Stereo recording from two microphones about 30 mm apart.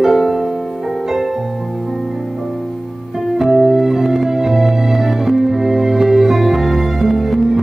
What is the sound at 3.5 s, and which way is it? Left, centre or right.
Music, centre.